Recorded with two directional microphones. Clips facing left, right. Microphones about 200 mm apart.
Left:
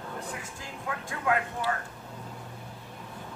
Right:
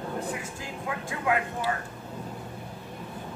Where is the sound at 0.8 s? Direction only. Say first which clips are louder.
Right 1 dB; 10° right (ahead or behind).